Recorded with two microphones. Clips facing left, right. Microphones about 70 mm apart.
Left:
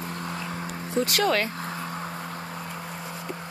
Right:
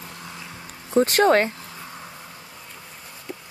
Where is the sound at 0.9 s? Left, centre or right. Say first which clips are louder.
Right 7 dB; right.